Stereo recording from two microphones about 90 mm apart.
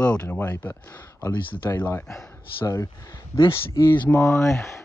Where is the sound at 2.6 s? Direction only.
40° left (ahead or behind).